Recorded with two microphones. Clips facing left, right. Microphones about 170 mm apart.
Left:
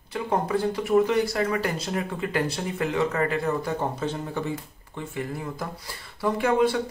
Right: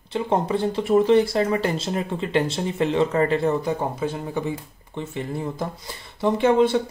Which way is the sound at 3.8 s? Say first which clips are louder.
Right 2 dB; 10° right (ahead or behind).